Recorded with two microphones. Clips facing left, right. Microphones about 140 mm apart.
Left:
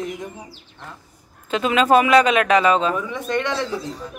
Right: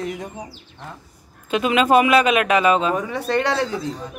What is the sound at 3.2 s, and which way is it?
Speech, 35° right (ahead or behind).